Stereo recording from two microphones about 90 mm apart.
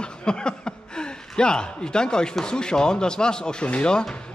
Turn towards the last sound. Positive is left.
turn(degrees=10)  # may be behind; listen again after turning